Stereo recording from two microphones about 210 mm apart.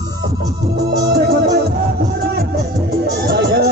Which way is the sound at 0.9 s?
50° right (ahead or behind).